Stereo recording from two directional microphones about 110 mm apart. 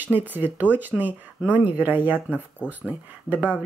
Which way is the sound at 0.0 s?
15° right (ahead or behind).